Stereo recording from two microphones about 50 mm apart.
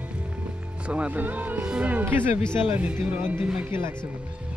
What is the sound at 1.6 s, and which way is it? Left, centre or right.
Speech, right.